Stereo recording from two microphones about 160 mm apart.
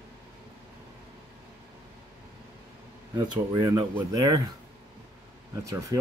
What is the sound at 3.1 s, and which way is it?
Speech, 25° right (ahead or behind).